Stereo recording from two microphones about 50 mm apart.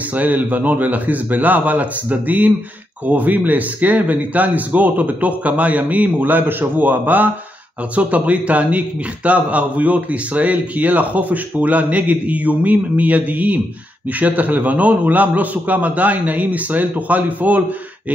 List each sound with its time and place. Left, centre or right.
0.1 s a man's voice: right